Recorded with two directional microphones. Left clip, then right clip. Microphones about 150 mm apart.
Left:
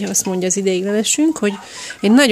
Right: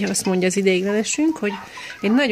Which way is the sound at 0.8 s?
25° left (ahead or behind).